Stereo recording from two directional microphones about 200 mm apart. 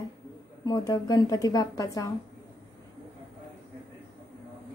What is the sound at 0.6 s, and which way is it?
A woman's voice, 20° left (ahead or behind).